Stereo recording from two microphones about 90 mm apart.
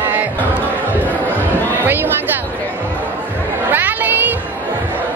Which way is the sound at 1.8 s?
20° right (ahead or behind).